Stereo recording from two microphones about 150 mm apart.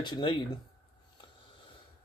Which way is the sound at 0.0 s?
30° left (ahead or behind).